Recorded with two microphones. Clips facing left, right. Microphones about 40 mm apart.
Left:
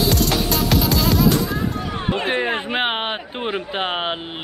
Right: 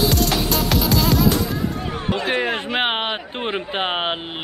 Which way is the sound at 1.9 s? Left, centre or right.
Left.